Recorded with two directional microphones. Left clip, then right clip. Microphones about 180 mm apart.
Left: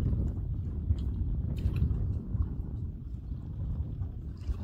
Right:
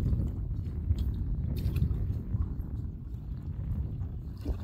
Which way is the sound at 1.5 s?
Centre (ahead or behind).